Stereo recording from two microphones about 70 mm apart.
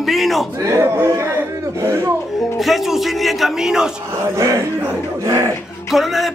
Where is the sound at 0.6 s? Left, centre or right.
Right.